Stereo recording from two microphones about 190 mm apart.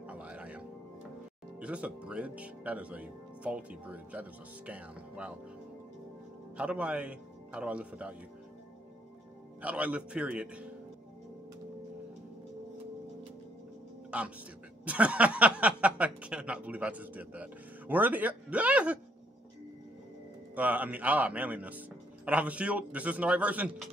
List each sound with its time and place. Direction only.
0.0 s music: 5° right (ahead or behind)
1.6 s speech: 5° right (ahead or behind)
6.5 s a man's voice: 5° right (ahead or behind)
9.6 s speech: 5° right (ahead or behind)
14.1 s speech: 5° right (ahead or behind)
20.5 s speech: 10° right (ahead or behind)